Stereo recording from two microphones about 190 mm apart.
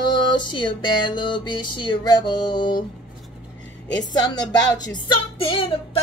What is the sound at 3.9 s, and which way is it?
Female singing, 20° left (ahead or behind).